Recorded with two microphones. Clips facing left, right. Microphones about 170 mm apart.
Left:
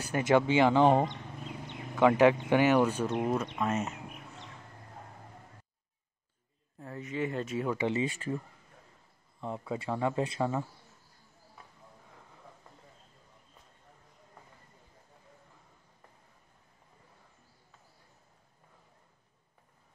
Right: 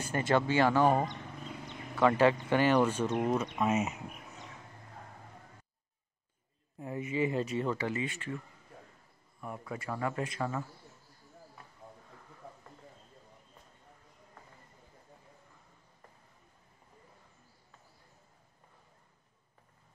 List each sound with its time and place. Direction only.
0.0 s speech: 10° left (ahead or behind); by 3.9 s 5° right (ahead or behind)
6.8 s speech: 15° right (ahead or behind)
7.7 s speech: 20° left (ahead or behind)
8.0 s speech: 35° left (ahead or behind)
9.4 s speech: 25° left (ahead or behind)